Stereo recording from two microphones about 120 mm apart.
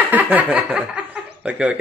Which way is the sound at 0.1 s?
15° right (ahead or behind).